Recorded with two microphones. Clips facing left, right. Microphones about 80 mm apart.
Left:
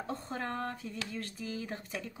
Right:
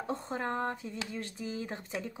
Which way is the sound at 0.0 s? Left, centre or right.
Right.